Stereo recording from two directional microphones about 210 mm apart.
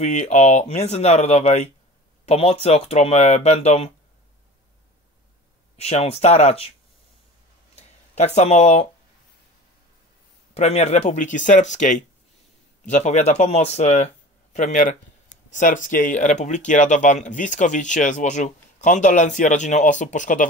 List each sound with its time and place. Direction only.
0.0 s speech: 35° left (ahead or behind)
5.8 s speech: 30° left (ahead or behind)
8.1 s speech: 30° left (ahead or behind)
10.5 s speech: 30° left (ahead or behind)